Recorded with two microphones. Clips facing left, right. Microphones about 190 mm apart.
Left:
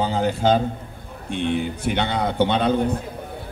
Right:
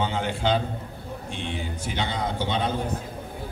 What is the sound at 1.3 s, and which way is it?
A man's voice, 60° left (ahead or behind).